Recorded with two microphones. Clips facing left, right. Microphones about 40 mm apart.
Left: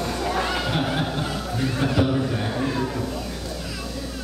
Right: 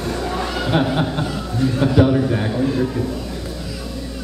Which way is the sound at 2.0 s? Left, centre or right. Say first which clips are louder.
Right 8 dB; centre.